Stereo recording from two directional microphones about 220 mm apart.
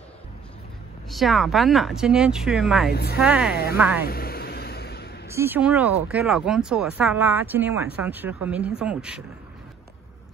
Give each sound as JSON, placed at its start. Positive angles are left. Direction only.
{"t": 1.0, "sound": "speech", "side_deg": 0}
{"t": 2.9, "sound": "speech", "side_deg": 45}
{"t": 3.2, "sound": "speech", "side_deg": -5}
{"t": 4.0, "sound": "vehicle", "side_deg": 45}
{"t": 5.3, "sound": "speech", "side_deg": -10}